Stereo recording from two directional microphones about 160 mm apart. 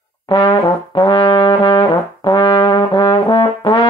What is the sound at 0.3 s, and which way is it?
Brass instrument, 30° left (ahead or behind).